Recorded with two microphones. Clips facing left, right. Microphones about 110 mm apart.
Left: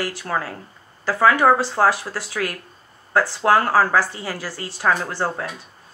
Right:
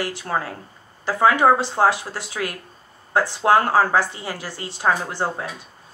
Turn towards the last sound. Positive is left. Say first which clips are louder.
# left 1 dB
turn(degrees=-20)  # may be behind; listen again after turning